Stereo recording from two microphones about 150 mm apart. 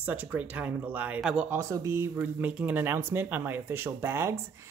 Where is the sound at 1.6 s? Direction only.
20° right (ahead or behind).